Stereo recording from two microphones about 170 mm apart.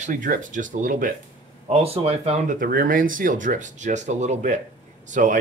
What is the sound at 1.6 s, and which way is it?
Speech, 35° right (ahead or behind).